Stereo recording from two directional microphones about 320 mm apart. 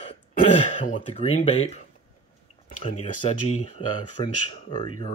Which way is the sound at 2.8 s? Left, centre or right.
Left.